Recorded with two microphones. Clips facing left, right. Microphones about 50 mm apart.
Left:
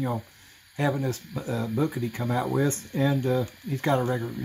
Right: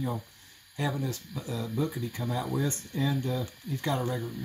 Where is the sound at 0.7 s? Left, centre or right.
Left.